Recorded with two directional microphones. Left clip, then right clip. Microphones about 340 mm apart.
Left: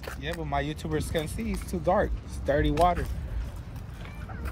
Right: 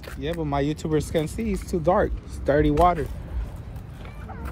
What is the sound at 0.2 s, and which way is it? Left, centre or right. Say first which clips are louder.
Speech: right 5 dB; right.